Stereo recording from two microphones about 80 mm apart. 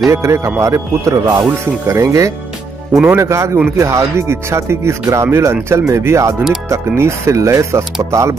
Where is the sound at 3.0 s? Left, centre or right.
Right.